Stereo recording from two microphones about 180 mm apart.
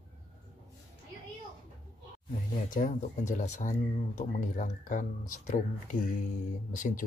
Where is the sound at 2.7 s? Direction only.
45° left (ahead or behind).